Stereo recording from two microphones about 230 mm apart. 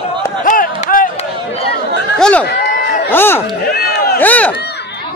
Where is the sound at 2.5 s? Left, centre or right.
Left.